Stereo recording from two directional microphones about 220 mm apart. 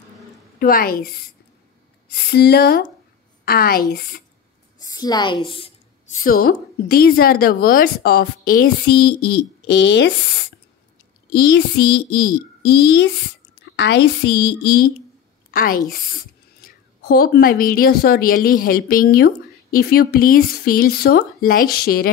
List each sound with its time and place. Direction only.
0.6 s a woman's voice: 40° left (ahead or behind)
4.7 s a woman's voice: 15° left (ahead or behind)
6.1 s a woman's voice: 40° left (ahead or behind)
14.6 s speech: 20° left (ahead or behind)
15.5 s a woman's voice: 40° left (ahead or behind)